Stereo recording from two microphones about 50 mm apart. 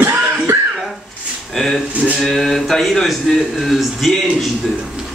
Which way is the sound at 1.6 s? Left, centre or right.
Centre.